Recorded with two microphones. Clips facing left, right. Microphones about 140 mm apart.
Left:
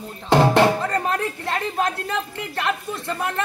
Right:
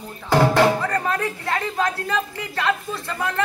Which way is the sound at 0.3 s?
25° left (ahead or behind).